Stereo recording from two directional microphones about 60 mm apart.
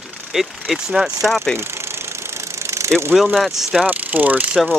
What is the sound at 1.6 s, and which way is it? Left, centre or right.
Engine, right.